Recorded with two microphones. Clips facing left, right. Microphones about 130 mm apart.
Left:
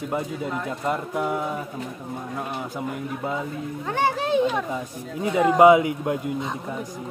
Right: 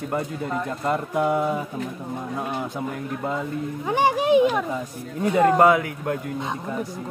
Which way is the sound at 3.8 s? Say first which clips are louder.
Right 3 dB; 15° right (ahead or behind).